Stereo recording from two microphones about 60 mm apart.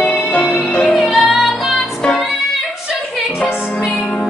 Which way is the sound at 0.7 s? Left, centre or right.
Left.